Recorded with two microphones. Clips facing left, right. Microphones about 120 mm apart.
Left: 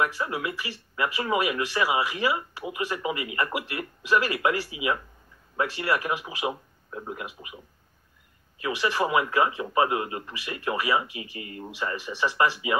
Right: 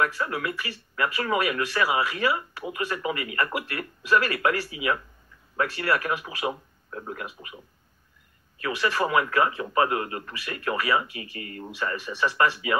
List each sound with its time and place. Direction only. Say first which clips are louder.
0.0 s speech: right 1 dB; 20° left (ahead or behind)